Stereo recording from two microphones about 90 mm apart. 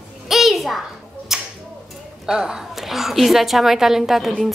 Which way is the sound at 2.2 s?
5° right (ahead or behind).